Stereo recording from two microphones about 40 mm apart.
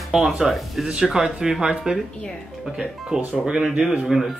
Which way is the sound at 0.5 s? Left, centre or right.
Centre.